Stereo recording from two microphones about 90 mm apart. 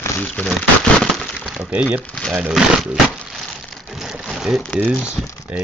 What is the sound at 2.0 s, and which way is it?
Speech, 10° left (ahead or behind).